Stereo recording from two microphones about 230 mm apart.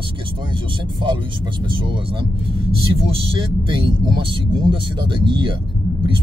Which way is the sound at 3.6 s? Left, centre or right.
Right.